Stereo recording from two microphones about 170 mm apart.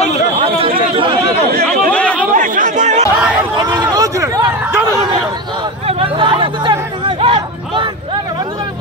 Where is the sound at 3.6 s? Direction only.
20° right (ahead or behind).